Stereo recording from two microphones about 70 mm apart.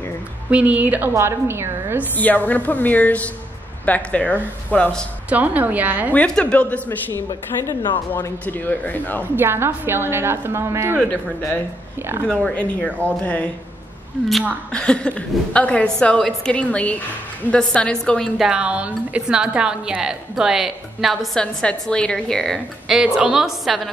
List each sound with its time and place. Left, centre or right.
0.5 s a woman's voice: centre
1.1 s a woman's voice: right
2.1 s a woman's voice: left
5.3 s a woman's voice: right
6.1 s a woman's voice: centre
7.5 s speech: left
8.5 s a woman's voice: left
9.2 s a woman's voice: right
12.3 s a woman's voice: centre
14.7 s a woman's voice: centre
18.4 s a woman's voice: centre
21.4 s a woman's voice: centre
22.8 s a woman's voice: centre